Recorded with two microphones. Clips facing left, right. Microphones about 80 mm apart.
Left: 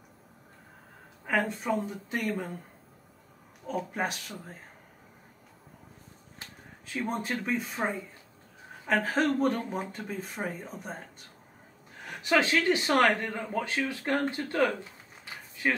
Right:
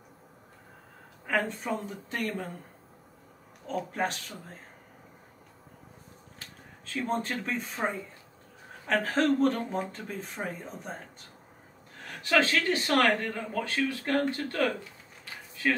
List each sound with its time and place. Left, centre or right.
1.2 s speech: centre
3.6 s speech: centre
6.9 s speech: centre
12.1 s speech: centre